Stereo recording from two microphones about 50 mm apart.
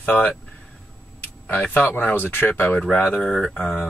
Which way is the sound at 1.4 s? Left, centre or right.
Left.